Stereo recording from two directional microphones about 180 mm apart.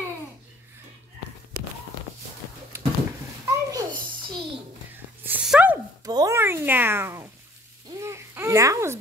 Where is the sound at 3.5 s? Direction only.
20° right (ahead or behind).